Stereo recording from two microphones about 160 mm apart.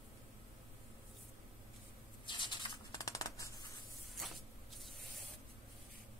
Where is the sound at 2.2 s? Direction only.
30° left (ahead or behind).